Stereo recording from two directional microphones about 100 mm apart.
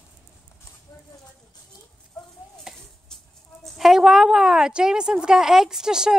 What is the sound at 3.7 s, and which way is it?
A woman's voice, 5° right (ahead or behind).